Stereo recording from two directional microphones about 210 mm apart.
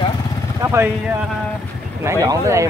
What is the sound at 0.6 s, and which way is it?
Speech, 10° right (ahead or behind).